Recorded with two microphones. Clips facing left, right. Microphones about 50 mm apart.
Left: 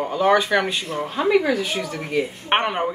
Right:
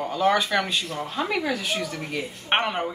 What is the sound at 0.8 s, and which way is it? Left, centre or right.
Speech, left.